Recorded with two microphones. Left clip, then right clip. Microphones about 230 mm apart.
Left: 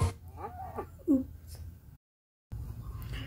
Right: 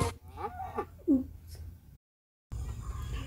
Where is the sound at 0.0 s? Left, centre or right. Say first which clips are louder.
Right 4 dB; right.